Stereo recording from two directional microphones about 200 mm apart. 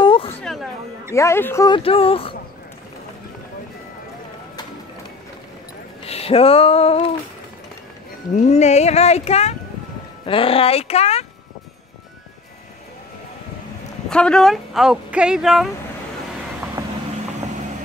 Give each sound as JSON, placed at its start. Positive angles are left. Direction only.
{"t": 0.0, "sound": "music", "side_deg": 25}
{"t": 0.4, "sound": "a sound", "side_deg": 0}
{"t": 1.1, "sound": "speech", "side_deg": 15}
{"t": 1.8, "sound": "speech", "side_deg": 30}
{"t": 6.0, "sound": "a sound", "side_deg": 30}
{"t": 8.4, "sound": "speech", "side_deg": 35}
{"t": 14.0, "sound": "speech", "side_deg": 5}